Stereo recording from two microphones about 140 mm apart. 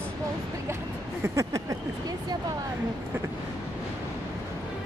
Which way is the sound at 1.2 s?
25° right (ahead or behind).